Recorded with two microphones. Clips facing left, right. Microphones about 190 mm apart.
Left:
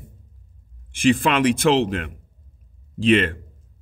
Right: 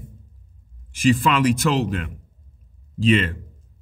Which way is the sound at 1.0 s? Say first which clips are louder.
Even; 50° left (ahead or behind).